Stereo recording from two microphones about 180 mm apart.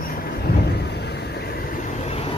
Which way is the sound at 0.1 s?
55° left (ahead or behind).